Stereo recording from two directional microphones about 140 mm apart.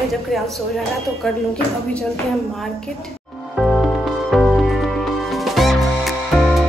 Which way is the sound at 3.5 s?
Centre (ahead or behind).